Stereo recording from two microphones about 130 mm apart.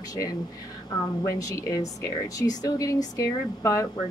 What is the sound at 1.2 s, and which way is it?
Speech, 25° left (ahead or behind).